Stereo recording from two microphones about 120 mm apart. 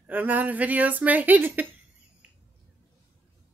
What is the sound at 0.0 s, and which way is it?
A woman's voice, 15° right (ahead or behind).